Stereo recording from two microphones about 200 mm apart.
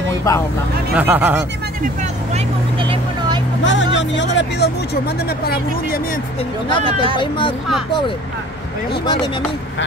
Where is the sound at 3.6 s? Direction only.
65° left (ahead or behind).